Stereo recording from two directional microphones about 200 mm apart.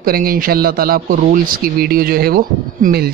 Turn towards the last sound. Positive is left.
turn(degrees=-50)  # may be behind; listen again after turning